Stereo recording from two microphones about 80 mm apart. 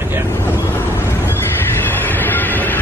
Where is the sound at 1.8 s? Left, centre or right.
Left.